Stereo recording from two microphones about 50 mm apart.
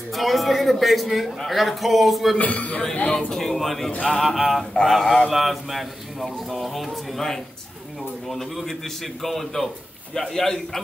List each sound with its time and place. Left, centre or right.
0.1 s a man's voice: centre
2.3 s a man's voice: left
3.3 s a man's voice: centre